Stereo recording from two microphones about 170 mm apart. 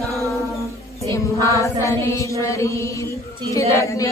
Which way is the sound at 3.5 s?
20° left (ahead or behind).